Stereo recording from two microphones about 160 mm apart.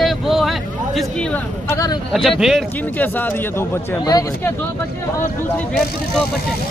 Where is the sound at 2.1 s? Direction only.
Centre (ahead or behind).